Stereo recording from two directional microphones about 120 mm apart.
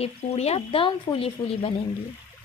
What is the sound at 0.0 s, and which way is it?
Speech, 60° left (ahead or behind).